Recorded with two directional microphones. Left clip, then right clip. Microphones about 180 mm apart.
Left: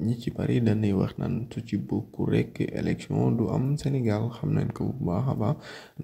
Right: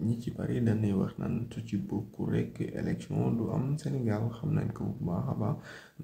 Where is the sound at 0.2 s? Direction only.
35° left (ahead or behind).